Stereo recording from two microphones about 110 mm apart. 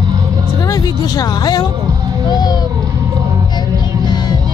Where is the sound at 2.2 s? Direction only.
35° left (ahead or behind).